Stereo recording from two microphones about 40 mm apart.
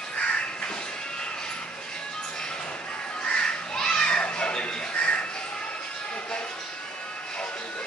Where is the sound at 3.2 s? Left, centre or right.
Left.